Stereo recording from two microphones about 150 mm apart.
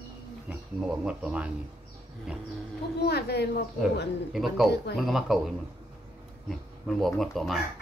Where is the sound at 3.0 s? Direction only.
90° left.